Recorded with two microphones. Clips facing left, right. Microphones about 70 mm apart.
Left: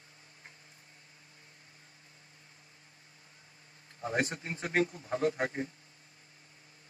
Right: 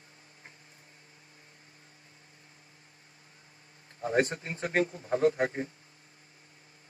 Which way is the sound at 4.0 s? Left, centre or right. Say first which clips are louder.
Right 5 dB; right.